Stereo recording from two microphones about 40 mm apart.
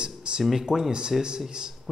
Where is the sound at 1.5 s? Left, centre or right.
Right.